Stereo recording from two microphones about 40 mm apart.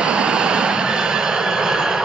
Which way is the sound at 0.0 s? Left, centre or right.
Right.